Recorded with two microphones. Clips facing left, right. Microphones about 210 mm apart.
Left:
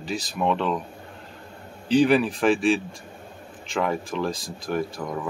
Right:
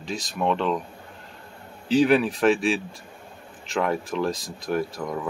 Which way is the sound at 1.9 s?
Centre (ahead or behind).